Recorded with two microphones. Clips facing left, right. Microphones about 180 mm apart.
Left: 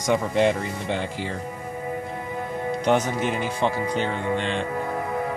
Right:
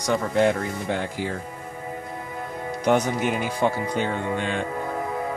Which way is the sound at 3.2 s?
5° right (ahead or behind).